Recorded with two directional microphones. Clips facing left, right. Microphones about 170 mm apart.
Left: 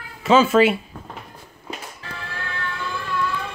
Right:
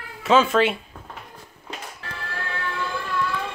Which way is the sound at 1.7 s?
5° left (ahead or behind).